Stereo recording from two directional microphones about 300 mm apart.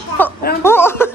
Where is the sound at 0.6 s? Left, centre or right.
Centre.